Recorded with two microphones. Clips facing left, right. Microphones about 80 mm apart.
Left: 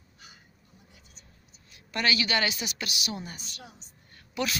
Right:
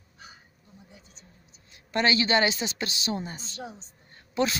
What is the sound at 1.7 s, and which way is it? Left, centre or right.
Speech, right.